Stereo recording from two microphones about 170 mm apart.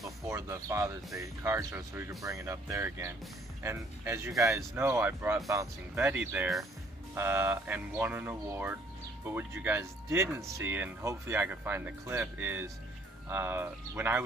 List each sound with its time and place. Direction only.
0.0 s speech: 15° right (ahead or behind)